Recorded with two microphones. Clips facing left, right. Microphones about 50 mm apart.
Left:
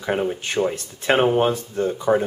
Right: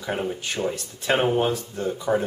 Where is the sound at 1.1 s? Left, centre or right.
Centre.